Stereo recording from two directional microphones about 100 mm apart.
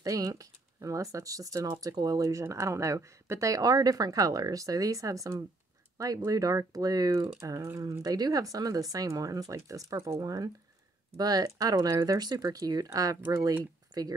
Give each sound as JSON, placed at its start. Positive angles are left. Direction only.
{"t": 0.0, "sound": "speech", "side_deg": -35}